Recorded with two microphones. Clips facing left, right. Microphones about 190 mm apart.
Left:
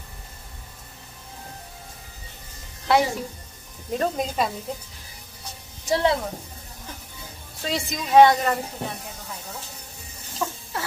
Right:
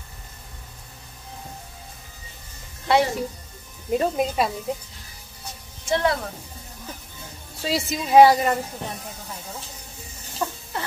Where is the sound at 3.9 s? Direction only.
5° right (ahead or behind).